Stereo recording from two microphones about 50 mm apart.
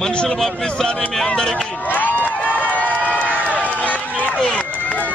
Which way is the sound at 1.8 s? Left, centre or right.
Left.